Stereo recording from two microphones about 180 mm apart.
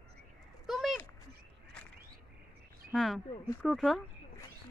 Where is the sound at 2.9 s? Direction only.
Centre (ahead or behind).